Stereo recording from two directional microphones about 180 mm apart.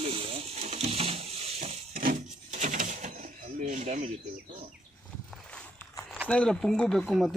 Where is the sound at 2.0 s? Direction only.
45° right (ahead or behind).